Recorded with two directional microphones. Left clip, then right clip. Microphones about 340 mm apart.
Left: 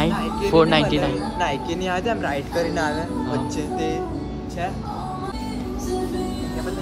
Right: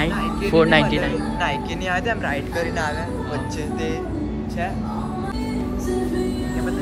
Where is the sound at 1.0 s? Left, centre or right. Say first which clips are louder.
Even; left.